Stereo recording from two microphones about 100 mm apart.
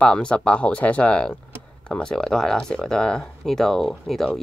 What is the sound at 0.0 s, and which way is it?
Speech, 10° left (ahead or behind).